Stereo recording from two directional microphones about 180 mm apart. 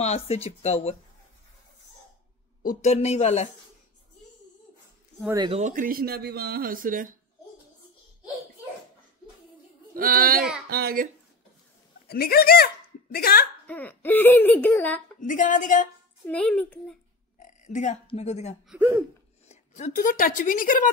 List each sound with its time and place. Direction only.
0.0 s speech: 35° left (ahead or behind)
2.6 s speech: 45° left (ahead or behind)
5.5 s speech: 40° right (ahead or behind)
9.9 s speech: 55° right (ahead or behind)
12.1 s speech: 60° left (ahead or behind)
13.7 s a child's voice: 10° left (ahead or behind)
15.1 s a woman's voice: 45° left (ahead or behind)
16.3 s a child's voice: 5° left (ahead or behind)
17.4 s a sound: 45° left (ahead or behind)
18.0 s speech: 35° left (ahead or behind)
18.7 s speech: 10° right (ahead or behind)
19.4 s a woman's voice: 40° left (ahead or behind)